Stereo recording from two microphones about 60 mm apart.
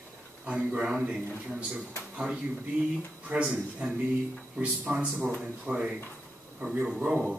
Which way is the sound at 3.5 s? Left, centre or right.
Centre.